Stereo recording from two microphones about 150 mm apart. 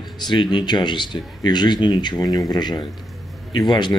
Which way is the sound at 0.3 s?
30° left (ahead or behind).